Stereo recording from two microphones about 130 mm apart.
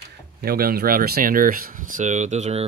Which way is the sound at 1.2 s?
90° right.